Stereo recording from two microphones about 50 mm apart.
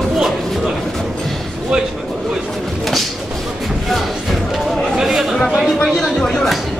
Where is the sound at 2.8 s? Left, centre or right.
Centre.